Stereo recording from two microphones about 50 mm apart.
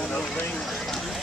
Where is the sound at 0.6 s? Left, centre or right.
Centre.